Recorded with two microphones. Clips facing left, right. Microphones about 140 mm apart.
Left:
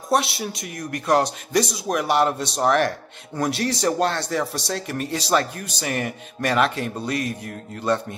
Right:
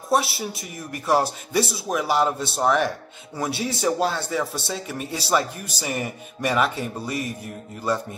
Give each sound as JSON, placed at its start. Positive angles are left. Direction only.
{"t": 0.1, "sound": "speech", "side_deg": 0}
{"t": 7.1, "sound": "speech", "side_deg": 70}